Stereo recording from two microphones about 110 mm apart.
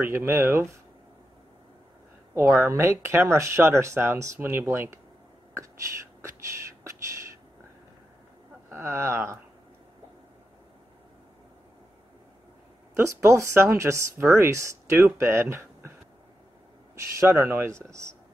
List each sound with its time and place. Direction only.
0.0 s speech: 20° right (ahead or behind)
2.3 s speech: 25° right (ahead or behind)
8.6 s speech: 20° right (ahead or behind)
12.9 s speech: 25° right (ahead or behind)
16.9 s speech: 25° right (ahead or behind)